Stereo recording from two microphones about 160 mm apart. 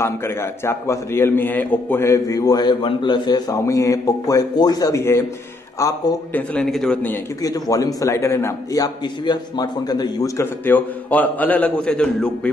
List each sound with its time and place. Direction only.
0.0 s a man's voice: 15° left (ahead or behind)
6.3 s a man's voice: 5° left (ahead or behind)
7.4 s a man's voice: 20° left (ahead or behind); by 12.3 s 5° left (ahead or behind)